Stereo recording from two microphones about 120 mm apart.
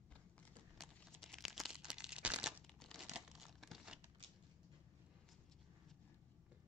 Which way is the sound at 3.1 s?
5° right (ahead or behind).